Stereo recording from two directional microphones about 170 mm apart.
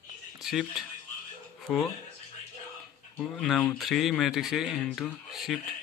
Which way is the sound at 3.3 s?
Centre (ahead or behind).